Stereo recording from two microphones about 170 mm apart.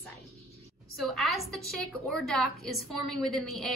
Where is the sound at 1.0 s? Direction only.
Centre (ahead or behind).